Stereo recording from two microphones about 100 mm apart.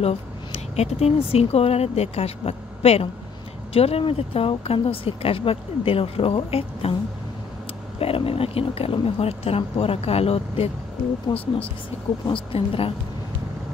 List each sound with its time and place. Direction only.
0.0 s speech: 80° left
3.7 s speech: 75° left (ahead or behind)
8.0 s speech: 70° left (ahead or behind)